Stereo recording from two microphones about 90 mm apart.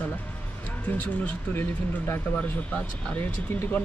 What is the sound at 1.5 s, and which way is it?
Speech, 20° left (ahead or behind).